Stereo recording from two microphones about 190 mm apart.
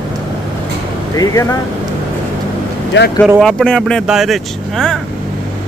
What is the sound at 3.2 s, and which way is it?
Speech, 10° right (ahead or behind).